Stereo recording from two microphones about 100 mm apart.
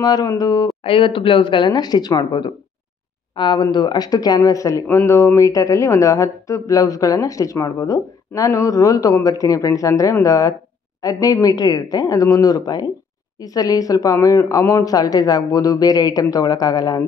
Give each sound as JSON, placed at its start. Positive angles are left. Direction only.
{"t": 0.0, "sound": "speech", "side_deg": 40}
{"t": 0.8, "sound": "speech", "side_deg": 60}